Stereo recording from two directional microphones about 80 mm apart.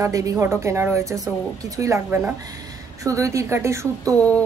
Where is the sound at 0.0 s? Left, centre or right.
Right.